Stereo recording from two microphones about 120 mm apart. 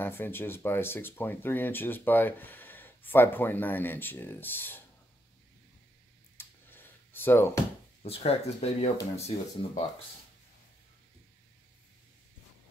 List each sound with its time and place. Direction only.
0.0 s speech: 20° left (ahead or behind)
6.3 s computer keyboard: 15° left (ahead or behind)
8.0 s speech: 60° left (ahead or behind)